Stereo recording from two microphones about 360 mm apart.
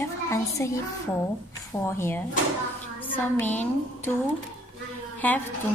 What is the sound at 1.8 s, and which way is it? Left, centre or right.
A woman's voice, centre.